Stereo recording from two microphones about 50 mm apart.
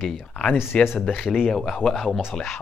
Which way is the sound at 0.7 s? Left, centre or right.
Centre.